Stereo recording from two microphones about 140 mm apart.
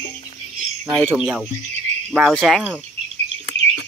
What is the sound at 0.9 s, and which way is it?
Speech, 10° right (ahead or behind).